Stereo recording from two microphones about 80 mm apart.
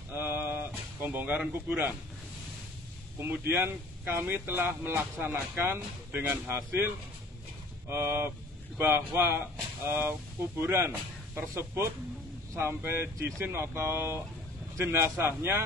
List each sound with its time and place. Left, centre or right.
0.1 s a sound: right
3.2 s speech: right
7.9 s speech: right